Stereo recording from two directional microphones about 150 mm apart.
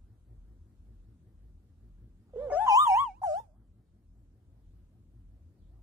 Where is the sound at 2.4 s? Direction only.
10° right (ahead or behind).